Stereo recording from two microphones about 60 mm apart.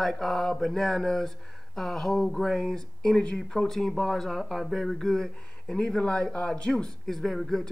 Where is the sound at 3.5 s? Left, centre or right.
Centre.